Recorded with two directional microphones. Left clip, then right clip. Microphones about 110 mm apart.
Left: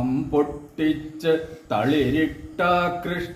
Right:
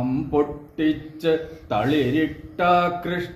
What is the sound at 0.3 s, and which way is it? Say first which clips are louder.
A man's voice: right 1 dB; 10° left (ahead or behind).